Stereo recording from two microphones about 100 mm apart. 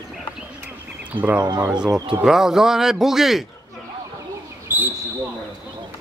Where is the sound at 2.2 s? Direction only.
5° right (ahead or behind).